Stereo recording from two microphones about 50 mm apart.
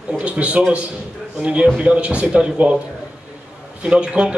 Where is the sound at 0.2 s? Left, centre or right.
Right.